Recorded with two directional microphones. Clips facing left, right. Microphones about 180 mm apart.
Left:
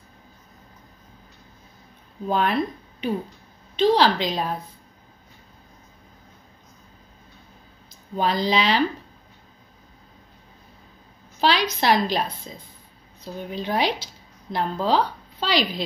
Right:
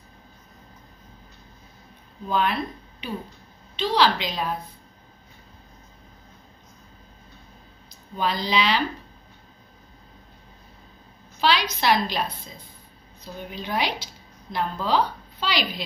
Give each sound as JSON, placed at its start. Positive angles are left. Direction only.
{"t": 2.2, "sound": "a woman's voice", "side_deg": 40}
{"t": 8.2, "sound": "a woman's voice", "side_deg": 40}
{"t": 11.4, "sound": "a woman's voice", "side_deg": 40}
{"t": 13.5, "sound": "a woman's voice", "side_deg": 35}